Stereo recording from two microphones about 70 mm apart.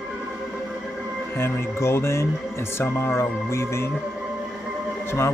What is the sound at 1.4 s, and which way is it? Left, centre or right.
Speech, left.